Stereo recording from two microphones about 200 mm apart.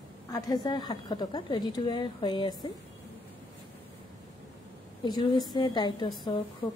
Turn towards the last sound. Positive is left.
turn(degrees=25)  # may be behind; listen again after turning